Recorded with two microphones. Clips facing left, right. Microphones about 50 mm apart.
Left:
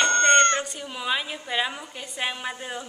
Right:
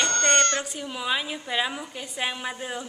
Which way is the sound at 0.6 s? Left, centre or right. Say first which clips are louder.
Even; centre.